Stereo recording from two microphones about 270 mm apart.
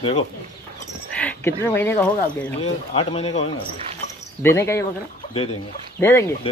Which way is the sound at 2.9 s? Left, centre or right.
Left.